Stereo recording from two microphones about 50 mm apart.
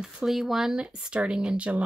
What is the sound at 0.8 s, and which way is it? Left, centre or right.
Speech, centre.